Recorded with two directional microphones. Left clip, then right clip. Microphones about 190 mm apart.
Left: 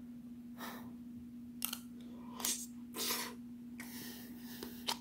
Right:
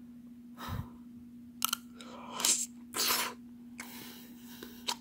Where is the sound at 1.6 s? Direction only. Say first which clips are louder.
Right 11 dB; 30° right (ahead or behind).